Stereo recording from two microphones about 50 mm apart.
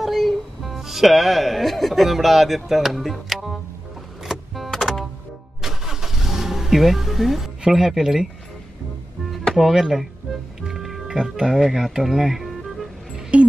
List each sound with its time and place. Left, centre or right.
0.0 s speech: centre
4.2 s vehicle: centre
4.6 s music: centre
5.6 s vehicle: centre
7.7 s speech: centre
9.5 s speech: centre
10.6 s music: centre
11.1 s speech: centre
13.3 s speech: right